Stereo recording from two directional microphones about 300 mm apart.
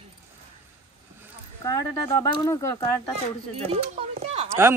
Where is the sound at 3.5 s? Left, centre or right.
Right.